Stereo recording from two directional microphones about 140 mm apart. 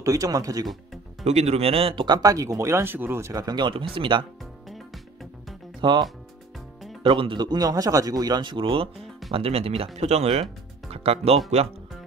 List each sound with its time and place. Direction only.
0.0 s speech: 25° right (ahead or behind)
1.2 s speech: 50° right (ahead or behind)
5.8 s speech: 35° right (ahead or behind)